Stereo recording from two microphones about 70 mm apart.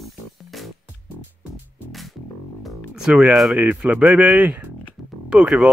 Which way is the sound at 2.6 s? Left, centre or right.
Centre.